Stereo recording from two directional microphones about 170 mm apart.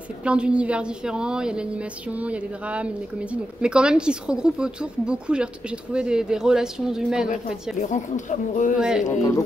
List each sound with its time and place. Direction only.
0.2 s a woman's voice: 5° right (ahead or behind)
7.8 s speech: 45° left (ahead or behind)
8.7 s speech: 5° right (ahead or behind)